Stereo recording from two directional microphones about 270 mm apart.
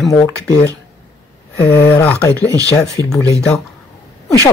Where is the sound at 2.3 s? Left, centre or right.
Centre.